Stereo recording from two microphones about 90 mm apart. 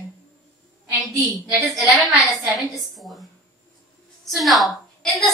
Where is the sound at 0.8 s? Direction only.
30° right (ahead or behind).